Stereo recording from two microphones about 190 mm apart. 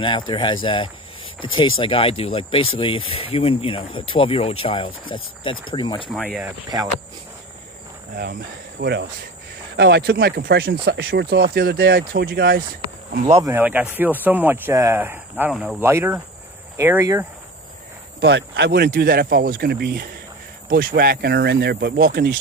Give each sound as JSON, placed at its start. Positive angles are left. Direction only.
{"t": 0.3, "sound": "speech", "side_deg": 25}
{"t": 6.0, "sound": "speech", "side_deg": 0}
{"t": 6.4, "sound": "speech", "side_deg": -20}
{"t": 8.8, "sound": "speech", "side_deg": -65}
{"t": 13.2, "sound": "speech", "side_deg": -25}
{"t": 13.5, "sound": "speech", "side_deg": -10}
{"t": 18.2, "sound": "speech", "side_deg": -60}